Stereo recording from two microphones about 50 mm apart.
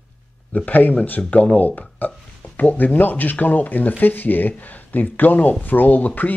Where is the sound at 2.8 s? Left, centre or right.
Left.